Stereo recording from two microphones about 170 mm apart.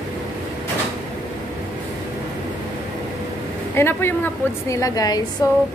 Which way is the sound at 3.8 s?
15° left (ahead or behind).